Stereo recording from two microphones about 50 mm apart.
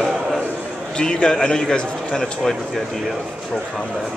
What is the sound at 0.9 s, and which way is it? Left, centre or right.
A man's voice, centre.